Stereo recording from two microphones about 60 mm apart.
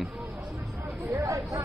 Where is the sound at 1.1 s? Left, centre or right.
Right.